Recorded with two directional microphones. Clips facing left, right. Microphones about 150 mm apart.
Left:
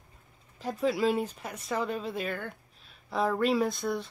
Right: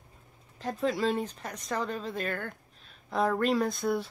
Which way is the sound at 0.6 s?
5° left (ahead or behind).